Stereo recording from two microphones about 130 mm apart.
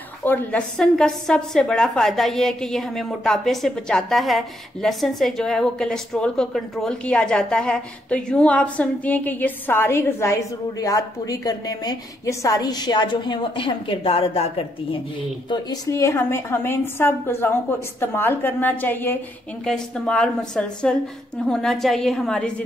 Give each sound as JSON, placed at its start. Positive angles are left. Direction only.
{"t": 0.2, "sound": "a woman's voice", "side_deg": 15}
{"t": 15.5, "sound": "a woman's voice", "side_deg": 30}